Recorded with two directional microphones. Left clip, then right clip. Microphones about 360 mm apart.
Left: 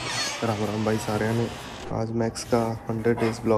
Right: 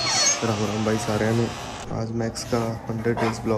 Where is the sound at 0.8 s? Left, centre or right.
Centre.